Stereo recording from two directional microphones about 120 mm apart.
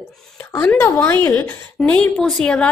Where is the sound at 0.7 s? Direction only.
25° left (ahead or behind).